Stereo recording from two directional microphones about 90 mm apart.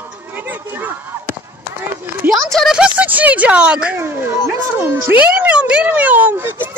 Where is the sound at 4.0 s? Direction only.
25° right (ahead or behind).